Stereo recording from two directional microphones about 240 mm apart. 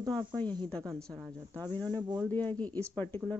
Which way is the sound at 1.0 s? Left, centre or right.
Centre.